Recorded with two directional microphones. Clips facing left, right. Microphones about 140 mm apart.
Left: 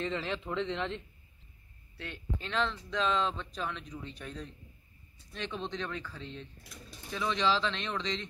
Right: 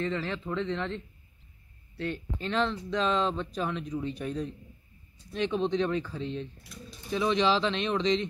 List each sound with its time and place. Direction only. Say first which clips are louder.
0.0 s speech: right 3 dB; 20° left (ahead or behind)
2.0 s speech: right 7 dB; centre (ahead or behind); by 8.3 s 20° right (ahead or behind)